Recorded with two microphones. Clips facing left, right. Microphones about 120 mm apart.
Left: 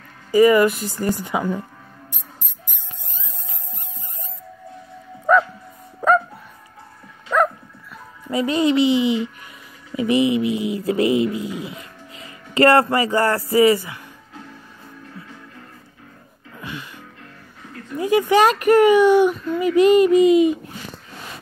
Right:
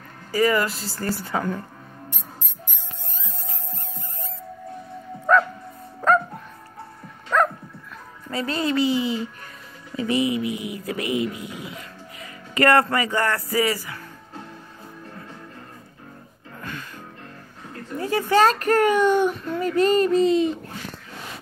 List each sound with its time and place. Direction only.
0.3 s a man's voice: 20° left (ahead or behind)
5.3 s bow-wow: 10° left (ahead or behind)
5.9 s music: 5° left (ahead or behind)
8.3 s a man's voice: 15° left (ahead or behind)
17.9 s a child's voice: 15° left (ahead or behind)
19.3 s child singing: centre (ahead or behind)
19.6 s speech: 10° left (ahead or behind)